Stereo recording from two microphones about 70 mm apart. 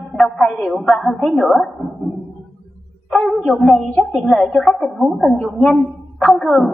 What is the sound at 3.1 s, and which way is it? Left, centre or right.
A man's voice, centre.